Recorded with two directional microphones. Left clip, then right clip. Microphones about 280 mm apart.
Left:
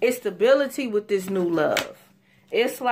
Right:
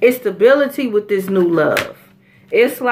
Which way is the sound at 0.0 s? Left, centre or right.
Left.